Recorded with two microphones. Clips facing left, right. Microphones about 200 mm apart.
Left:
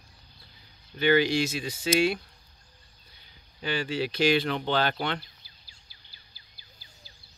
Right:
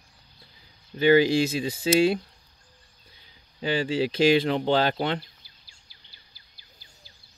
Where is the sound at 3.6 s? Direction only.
35° right (ahead or behind).